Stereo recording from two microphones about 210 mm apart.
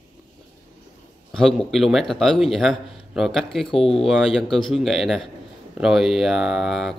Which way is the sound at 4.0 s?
Centre (ahead or behind).